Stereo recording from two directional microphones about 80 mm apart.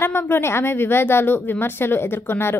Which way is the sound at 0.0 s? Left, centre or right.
Left.